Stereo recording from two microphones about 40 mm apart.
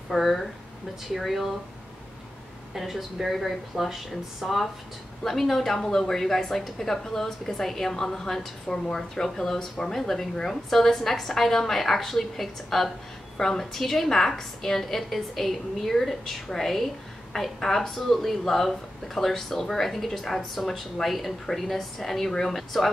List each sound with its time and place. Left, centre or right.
0.1 s speech: centre
2.7 s a woman's voice: centre